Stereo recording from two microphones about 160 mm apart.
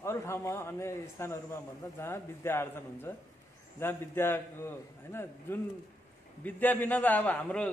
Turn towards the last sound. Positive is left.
turn(degrees=10)  # may be behind; listen again after turning